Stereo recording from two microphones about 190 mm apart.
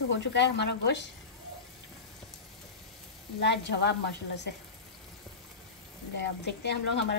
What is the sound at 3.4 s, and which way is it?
Speech, 65° left (ahead or behind).